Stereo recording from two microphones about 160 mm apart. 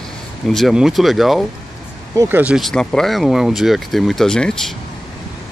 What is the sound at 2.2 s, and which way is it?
Speech, 10° right (ahead or behind).